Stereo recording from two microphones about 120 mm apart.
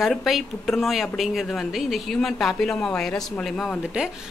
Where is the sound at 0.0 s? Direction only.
Centre (ahead or behind).